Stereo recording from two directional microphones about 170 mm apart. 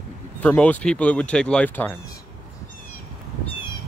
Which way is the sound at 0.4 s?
10° left (ahead or behind).